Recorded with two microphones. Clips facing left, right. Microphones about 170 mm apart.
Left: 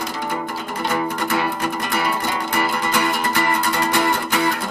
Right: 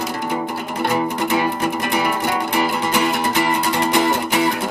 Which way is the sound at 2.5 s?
20° right (ahead or behind).